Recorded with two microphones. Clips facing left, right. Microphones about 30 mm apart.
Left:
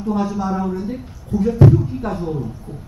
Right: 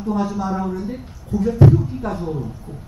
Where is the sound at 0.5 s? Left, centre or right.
Centre.